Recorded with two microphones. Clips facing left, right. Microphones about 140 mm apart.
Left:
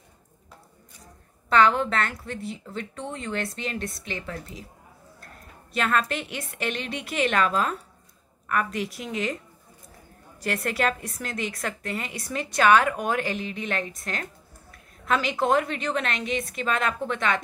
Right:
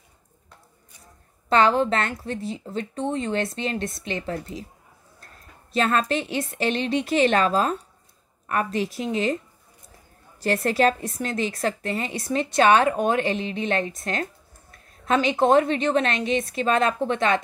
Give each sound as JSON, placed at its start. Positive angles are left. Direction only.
{"t": 1.5, "sound": "a woman's voice", "side_deg": -25}
{"t": 5.8, "sound": "a woman's voice", "side_deg": -30}
{"t": 10.4, "sound": "a woman's voice", "side_deg": -30}